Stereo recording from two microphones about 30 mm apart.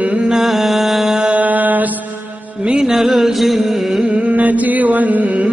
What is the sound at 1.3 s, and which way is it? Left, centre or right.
Music, right.